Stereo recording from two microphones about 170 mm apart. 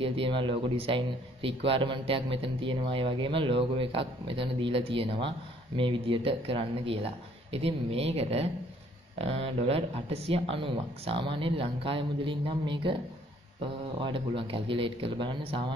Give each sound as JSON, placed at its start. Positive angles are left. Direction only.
{"t": 0.0, "sound": "speech", "side_deg": -30}